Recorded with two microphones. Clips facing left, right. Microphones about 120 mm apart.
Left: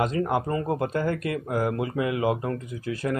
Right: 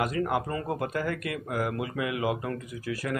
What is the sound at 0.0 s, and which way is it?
Speech, 25° left (ahead or behind).